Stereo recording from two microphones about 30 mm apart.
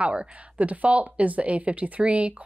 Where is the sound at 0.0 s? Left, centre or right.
Right.